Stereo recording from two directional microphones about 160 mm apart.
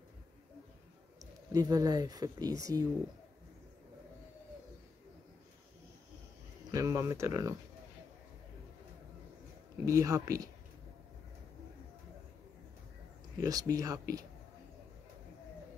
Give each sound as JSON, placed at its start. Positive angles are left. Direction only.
{"t": 1.5, "sound": "speech", "side_deg": -20}
{"t": 6.7, "sound": "speech", "side_deg": -20}
{"t": 9.8, "sound": "speech", "side_deg": -20}
{"t": 13.4, "sound": "speech", "side_deg": -20}